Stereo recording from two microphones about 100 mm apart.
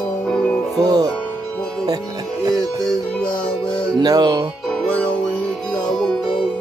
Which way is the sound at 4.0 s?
40° right (ahead or behind).